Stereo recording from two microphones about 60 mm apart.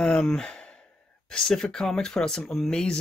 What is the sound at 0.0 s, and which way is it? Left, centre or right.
Sigh, centre.